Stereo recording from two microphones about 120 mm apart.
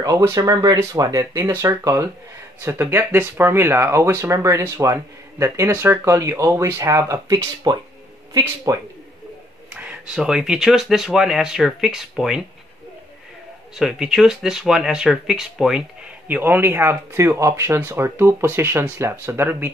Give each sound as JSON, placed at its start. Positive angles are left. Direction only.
{"t": 0.0, "sound": "speech", "side_deg": -30}
{"t": 9.8, "sound": "speech", "side_deg": -10}
{"t": 13.7, "sound": "speech", "side_deg": -5}
{"t": 16.3, "sound": "speech", "side_deg": -15}